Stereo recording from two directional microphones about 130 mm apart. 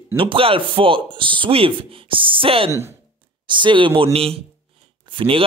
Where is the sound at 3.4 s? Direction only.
40° right (ahead or behind).